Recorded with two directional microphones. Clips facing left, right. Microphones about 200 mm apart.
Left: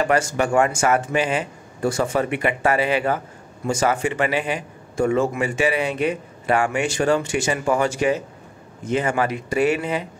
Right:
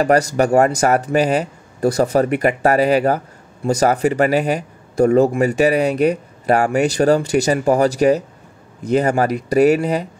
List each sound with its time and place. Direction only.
0.0 s a man's voice: 40° right (ahead or behind)